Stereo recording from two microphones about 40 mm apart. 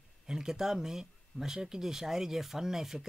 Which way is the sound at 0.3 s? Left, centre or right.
Centre.